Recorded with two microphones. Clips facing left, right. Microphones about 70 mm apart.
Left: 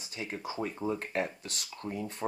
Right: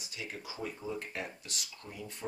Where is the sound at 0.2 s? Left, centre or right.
Left.